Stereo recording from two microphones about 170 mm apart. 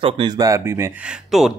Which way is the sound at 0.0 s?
25° right (ahead or behind).